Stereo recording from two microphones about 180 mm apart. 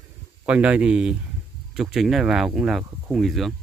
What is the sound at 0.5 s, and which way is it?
Speech, 5° right (ahead or behind).